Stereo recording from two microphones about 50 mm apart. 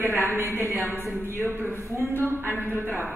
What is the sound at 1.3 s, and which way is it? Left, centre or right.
A woman's voice, right.